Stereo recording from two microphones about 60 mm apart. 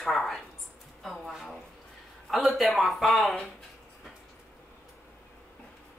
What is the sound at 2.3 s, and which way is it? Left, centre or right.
Speech, centre.